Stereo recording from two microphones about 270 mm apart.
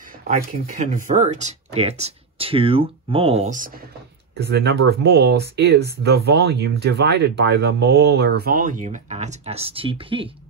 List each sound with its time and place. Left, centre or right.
0.3 s speech: right
4.4 s speech: right; by 10.3 s centre